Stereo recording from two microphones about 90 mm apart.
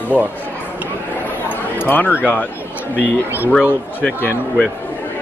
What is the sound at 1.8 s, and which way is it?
Speech, 20° left (ahead or behind).